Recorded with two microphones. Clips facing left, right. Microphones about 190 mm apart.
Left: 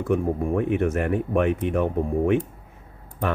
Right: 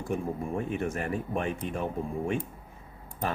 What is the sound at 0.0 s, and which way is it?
Speech, 60° left (ahead or behind).